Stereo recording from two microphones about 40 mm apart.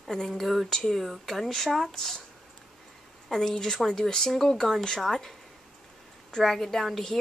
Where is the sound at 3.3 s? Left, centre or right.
Centre.